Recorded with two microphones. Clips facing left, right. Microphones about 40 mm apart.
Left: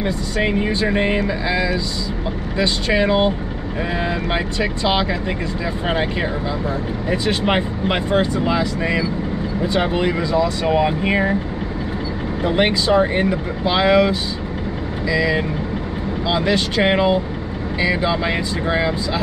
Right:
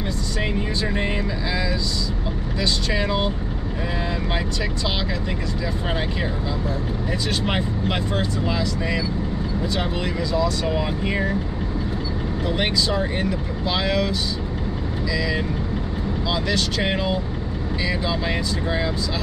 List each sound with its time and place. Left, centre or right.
0.0 s speech: left
12.4 s speech: left